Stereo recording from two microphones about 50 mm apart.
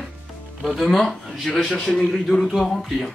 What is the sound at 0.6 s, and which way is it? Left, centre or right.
Speech, centre.